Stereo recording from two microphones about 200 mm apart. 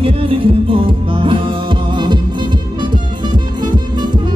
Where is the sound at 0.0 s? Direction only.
25° right (ahead or behind).